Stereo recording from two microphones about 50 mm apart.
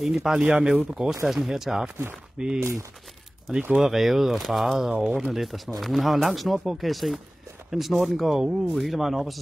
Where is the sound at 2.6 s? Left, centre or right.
Right.